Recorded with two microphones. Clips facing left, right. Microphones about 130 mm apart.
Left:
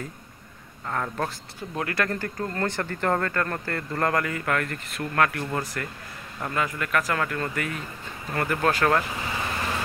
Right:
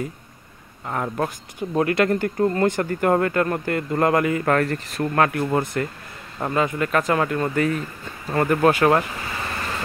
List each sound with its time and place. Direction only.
0.8 s speech: 15° right (ahead or behind)
4.5 s speech: 35° right (ahead or behind); by 9.0 s 20° right (ahead or behind)